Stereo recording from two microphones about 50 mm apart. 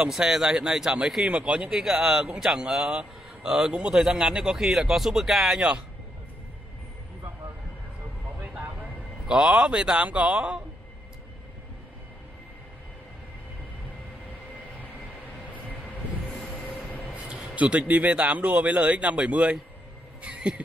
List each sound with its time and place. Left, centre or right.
0.1 s speech: centre
1.7 s speech: centre
9.3 s speech: centre
17.1 s a man's voice: right
20.2 s a sound: right